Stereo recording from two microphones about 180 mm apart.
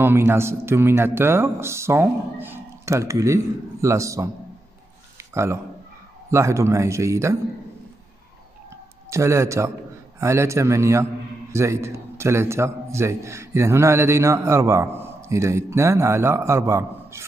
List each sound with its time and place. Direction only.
0.0 s a man's voice: 15° right (ahead or behind)
5.1 s a sound: 15° right (ahead or behind)
6.3 s a man's voice: 15° right (ahead or behind)
9.1 s a man's voice: 15° right (ahead or behind)